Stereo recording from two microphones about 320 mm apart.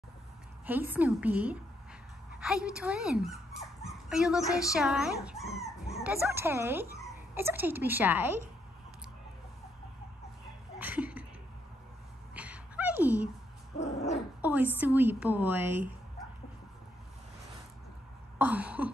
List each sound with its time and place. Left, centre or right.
0.7 s speech: centre
10.8 s a sound: centre
12.4 s a sound: centre
13.7 s dog: left
14.4 s speech: centre
18.4 s speech: centre